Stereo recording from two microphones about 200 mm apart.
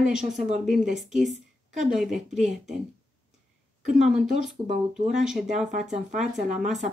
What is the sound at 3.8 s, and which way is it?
Speech, centre (ahead or behind).